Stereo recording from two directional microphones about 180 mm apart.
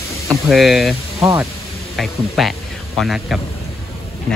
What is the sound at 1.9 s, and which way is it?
A man's voice, centre (ahead or behind).